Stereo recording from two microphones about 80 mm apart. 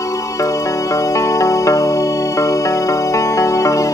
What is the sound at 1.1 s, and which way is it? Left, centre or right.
Music, left.